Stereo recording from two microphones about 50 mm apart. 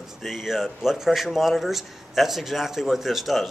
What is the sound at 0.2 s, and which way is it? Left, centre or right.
Speech, centre.